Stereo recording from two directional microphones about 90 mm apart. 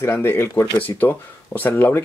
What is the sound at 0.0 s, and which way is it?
Speech, 25° left (ahead or behind).